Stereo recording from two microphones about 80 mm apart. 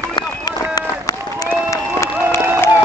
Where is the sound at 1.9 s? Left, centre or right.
Left.